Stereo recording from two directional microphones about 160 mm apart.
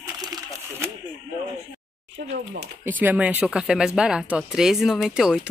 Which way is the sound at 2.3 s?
90° right.